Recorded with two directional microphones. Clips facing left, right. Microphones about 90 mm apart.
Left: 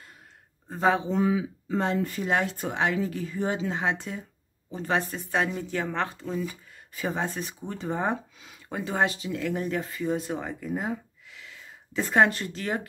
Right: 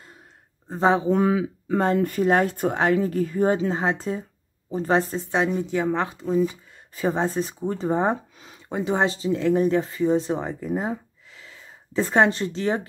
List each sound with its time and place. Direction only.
0.7 s speech: 25° right (ahead or behind)
1.0 s speech: 60° right (ahead or behind)
1.9 s a woman's voice: 50° right (ahead or behind); by 6.3 s 15° right (ahead or behind)
6.4 s speech: 30° right (ahead or behind)
8.7 s speech: 20° right (ahead or behind)